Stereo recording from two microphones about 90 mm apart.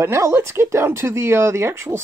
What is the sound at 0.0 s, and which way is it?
Speech, 35° right (ahead or behind).